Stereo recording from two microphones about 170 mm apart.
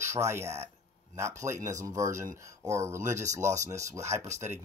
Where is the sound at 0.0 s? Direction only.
15° right (ahead or behind).